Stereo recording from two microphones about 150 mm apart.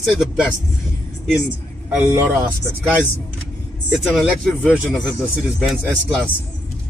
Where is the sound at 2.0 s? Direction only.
15° right (ahead or behind).